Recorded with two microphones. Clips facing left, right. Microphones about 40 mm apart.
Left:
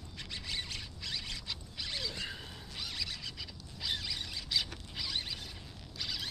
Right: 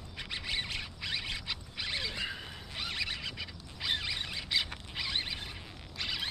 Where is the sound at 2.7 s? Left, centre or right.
Right.